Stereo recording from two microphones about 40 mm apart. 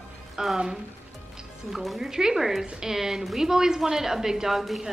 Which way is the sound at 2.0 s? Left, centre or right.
Centre.